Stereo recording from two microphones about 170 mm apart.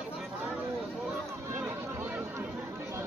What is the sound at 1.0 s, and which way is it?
Chatter, 15° right (ahead or behind).